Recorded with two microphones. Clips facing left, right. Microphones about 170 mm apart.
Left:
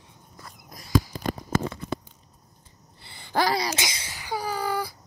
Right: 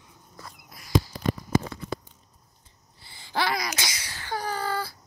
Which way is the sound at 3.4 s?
30° left (ahead or behind).